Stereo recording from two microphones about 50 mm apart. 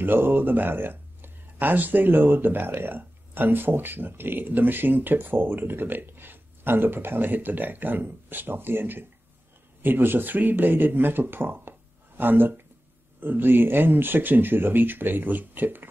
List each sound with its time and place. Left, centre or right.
0.0 s speech: right